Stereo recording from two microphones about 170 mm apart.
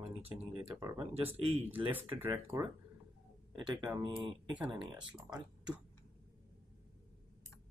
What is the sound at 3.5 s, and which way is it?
Speech, 25° right (ahead or behind).